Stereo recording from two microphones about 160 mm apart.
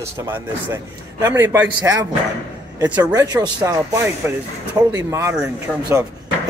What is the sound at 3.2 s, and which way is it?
Speech, 20° right (ahead or behind).